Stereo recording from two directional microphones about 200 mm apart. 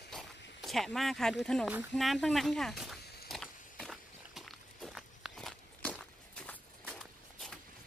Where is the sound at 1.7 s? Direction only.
Centre (ahead or behind).